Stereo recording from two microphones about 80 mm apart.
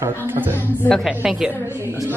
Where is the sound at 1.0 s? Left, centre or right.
Centre.